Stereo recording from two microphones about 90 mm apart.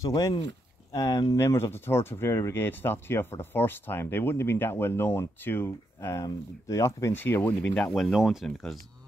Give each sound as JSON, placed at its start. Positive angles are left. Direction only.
{"t": 0.0, "sound": "speech", "side_deg": 40}